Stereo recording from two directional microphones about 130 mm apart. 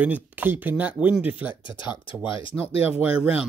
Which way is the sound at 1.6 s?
40° left (ahead or behind).